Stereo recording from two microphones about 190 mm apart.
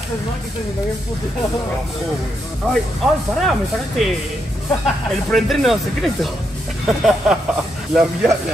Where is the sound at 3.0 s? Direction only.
Centre (ahead or behind).